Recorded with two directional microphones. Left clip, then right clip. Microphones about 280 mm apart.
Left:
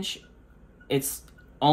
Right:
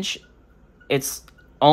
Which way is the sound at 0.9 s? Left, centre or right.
Right.